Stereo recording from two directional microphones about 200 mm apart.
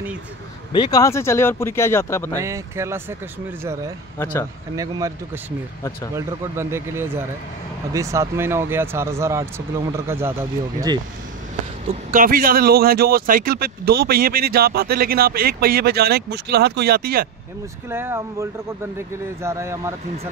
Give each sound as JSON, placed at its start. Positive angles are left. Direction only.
{"t": 0.7, "sound": "speech", "side_deg": 20}
{"t": 2.4, "sound": "speech", "side_deg": -15}
{"t": 4.2, "sound": "speech", "side_deg": 15}
{"t": 4.7, "sound": "speech", "side_deg": -15}
{"t": 12.1, "sound": "speech", "side_deg": -45}
{"t": 17.8, "sound": "speech", "side_deg": -10}